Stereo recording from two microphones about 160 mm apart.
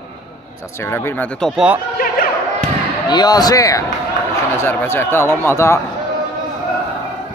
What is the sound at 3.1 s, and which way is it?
Speech, 25° left (ahead or behind).